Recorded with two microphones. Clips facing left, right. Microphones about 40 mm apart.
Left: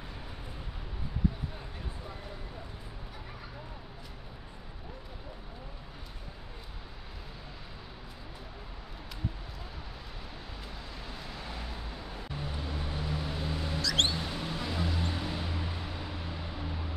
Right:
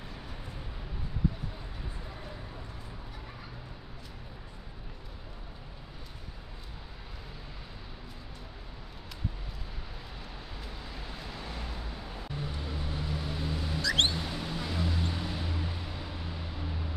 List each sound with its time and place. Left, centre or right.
11.1 s vehicle: centre
13.7 s music: right
14.1 s vehicle: centre